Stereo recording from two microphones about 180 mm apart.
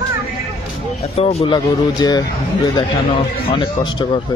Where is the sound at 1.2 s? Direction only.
35° left (ahead or behind).